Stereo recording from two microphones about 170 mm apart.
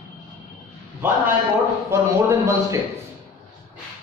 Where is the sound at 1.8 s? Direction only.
20° right (ahead or behind).